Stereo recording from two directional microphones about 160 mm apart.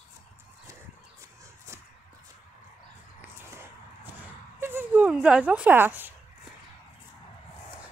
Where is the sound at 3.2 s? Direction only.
15° right (ahead or behind).